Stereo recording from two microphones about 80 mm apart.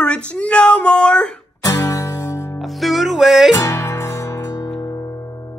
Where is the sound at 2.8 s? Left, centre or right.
Centre.